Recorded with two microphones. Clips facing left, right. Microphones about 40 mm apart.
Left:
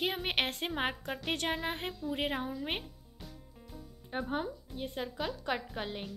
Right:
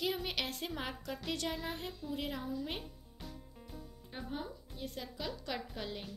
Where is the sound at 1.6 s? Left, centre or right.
Left.